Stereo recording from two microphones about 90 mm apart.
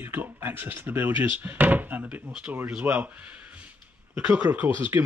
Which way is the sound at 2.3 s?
10° right (ahead or behind).